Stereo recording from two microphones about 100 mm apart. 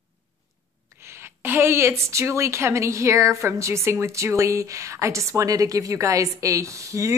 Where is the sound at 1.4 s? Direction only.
25° right (ahead or behind).